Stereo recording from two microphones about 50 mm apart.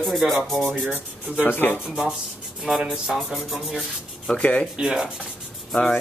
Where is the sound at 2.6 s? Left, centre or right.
Centre.